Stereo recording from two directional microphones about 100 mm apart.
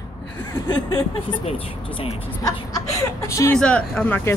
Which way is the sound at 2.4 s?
30° left (ahead or behind).